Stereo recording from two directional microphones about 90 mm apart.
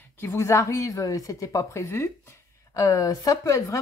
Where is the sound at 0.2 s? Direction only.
30° left (ahead or behind).